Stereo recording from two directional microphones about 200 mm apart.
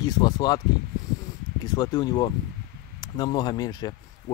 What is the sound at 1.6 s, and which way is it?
Speech, 20° left (ahead or behind).